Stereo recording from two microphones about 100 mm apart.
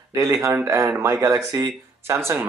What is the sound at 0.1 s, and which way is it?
Speech, 30° right (ahead or behind).